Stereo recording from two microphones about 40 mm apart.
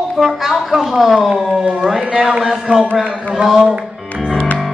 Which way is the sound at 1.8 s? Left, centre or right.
Centre.